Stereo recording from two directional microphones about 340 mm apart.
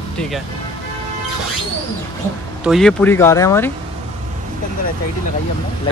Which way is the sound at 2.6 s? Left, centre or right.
Centre.